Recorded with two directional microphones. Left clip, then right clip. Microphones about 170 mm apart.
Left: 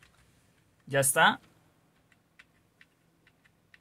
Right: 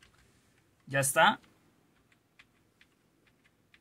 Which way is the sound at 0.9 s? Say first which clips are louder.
Left 1 dB; 15° left (ahead or behind).